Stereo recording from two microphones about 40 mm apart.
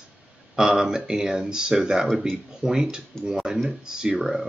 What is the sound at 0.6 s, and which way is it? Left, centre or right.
Speech, centre.